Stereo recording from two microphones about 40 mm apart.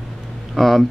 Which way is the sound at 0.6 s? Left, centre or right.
Centre.